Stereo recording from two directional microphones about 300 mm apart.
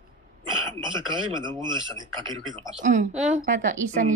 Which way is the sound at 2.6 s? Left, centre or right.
Right.